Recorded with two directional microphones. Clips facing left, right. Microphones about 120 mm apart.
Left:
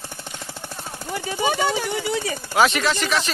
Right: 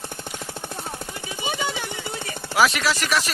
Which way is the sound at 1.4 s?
50° left (ahead or behind).